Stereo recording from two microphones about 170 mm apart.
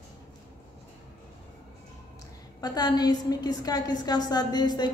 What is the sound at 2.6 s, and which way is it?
A woman's voice, 25° left (ahead or behind).